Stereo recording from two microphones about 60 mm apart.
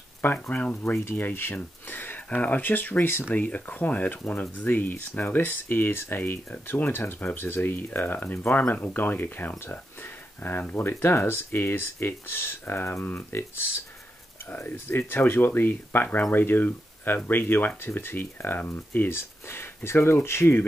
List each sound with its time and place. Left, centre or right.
0.2 s speech: left
3.3 s speech: left